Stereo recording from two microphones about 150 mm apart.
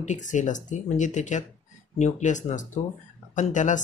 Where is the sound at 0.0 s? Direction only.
55° left (ahead or behind).